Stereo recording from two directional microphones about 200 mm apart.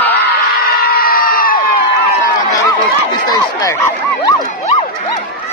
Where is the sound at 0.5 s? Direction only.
50° left (ahead or behind).